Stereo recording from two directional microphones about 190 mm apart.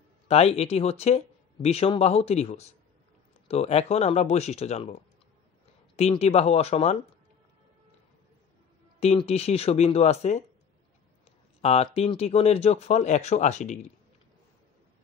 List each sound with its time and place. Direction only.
0.3 s speech: 35° left (ahead or behind)
5.9 s speech: 35° left (ahead or behind)
9.0 s speech: 35° left (ahead or behind)
11.6 s speech: 35° left (ahead or behind)